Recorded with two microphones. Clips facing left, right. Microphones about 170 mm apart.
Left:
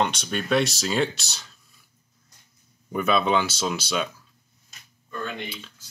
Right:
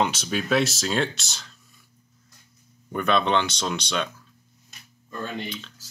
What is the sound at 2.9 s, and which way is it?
Speech, 5° left (ahead or behind).